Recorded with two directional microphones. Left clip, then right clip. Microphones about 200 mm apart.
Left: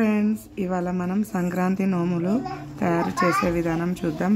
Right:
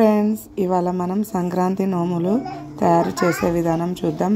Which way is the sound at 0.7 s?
15° right (ahead or behind).